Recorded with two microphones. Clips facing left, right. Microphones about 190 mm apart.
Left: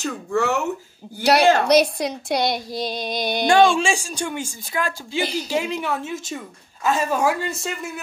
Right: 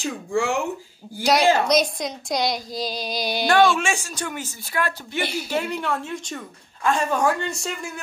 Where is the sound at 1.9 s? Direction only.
10° left (ahead or behind).